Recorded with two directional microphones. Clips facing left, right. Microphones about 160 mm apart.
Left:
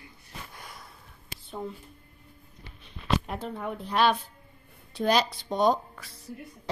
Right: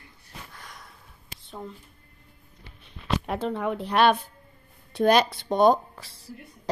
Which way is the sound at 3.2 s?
85° right.